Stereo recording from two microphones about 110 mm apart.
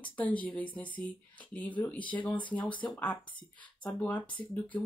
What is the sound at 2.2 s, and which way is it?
Speech, 45° left (ahead or behind).